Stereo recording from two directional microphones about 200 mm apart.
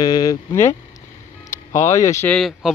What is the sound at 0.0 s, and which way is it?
Speech, 20° left (ahead or behind).